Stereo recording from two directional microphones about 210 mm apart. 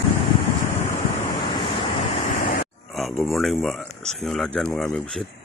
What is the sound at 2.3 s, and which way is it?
Vehicle, 40° left (ahead or behind).